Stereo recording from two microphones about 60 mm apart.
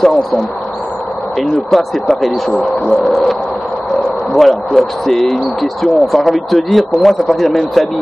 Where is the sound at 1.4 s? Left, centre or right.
Centre.